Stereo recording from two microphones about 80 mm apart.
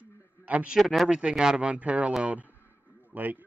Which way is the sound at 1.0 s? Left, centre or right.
Centre.